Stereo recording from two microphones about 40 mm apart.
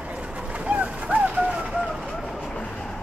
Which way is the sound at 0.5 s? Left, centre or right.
Right.